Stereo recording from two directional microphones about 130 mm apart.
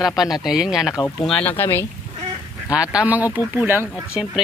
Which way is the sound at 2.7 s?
10° right (ahead or behind).